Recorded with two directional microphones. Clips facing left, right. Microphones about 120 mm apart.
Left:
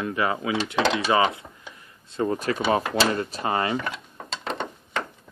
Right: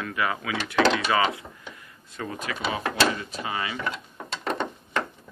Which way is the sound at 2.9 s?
50° left (ahead or behind).